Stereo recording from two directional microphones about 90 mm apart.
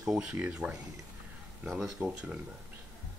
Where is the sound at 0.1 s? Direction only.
15° right (ahead or behind).